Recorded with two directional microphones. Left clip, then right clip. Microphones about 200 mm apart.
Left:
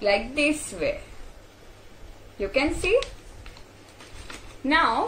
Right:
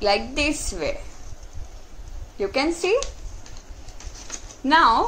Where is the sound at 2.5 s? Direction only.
50° right (ahead or behind).